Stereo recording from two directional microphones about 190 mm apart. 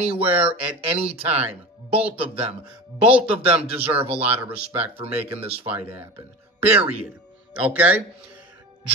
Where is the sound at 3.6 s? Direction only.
30° right (ahead or behind).